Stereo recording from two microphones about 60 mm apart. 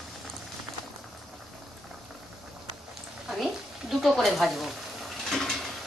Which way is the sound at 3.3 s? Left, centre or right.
Centre.